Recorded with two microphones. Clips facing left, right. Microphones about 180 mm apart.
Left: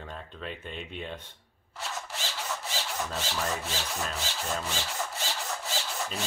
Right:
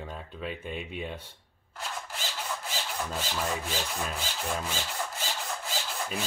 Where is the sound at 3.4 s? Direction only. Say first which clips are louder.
Right 2 dB; 10° right (ahead or behind).